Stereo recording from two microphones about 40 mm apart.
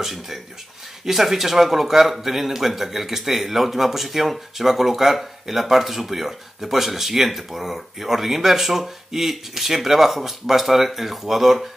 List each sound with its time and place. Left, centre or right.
0.0 s a man's voice: centre